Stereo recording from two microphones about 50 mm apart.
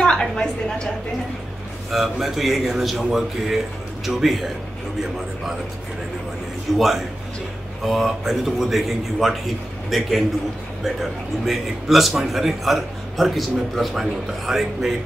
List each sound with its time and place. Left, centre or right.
0.0 s a woman's voice: centre
1.9 s a man's voice: centre
6.7 s a man's voice: centre